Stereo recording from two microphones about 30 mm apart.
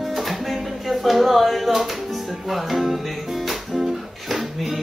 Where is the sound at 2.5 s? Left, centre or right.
Centre.